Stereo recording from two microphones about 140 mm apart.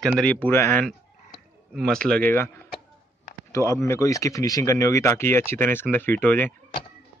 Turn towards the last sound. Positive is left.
turn(degrees=10)  # may be behind; listen again after turning